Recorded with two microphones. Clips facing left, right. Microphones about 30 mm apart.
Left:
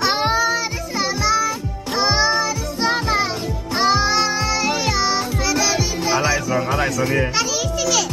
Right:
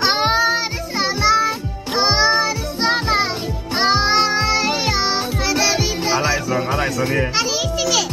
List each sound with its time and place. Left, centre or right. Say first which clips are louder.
0.0 s music: right 2 dB; right; by 8.0 s centre